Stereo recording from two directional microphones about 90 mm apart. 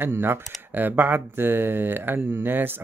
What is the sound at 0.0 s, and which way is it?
Speech, 25° right (ahead or behind).